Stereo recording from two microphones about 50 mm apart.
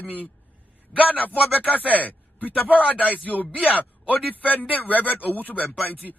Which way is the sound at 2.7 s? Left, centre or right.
Right.